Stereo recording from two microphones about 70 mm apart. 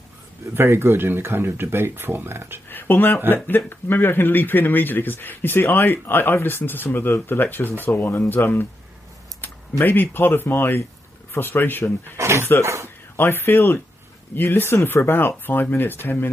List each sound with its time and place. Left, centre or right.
0.6 s speech: right
2.7 s speech: left
9.8 s speech: left
12.2 s speech: right
13.1 s speech: left